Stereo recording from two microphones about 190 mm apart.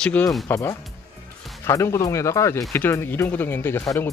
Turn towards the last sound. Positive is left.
turn(degrees=15)  # may be behind; listen again after turning